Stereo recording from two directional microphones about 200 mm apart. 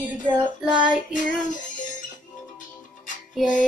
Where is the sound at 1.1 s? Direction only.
40° left (ahead or behind).